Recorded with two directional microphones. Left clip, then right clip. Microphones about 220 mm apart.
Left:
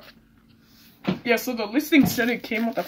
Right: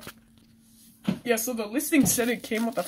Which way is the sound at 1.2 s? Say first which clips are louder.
Left 4 dB; 15° right (ahead or behind).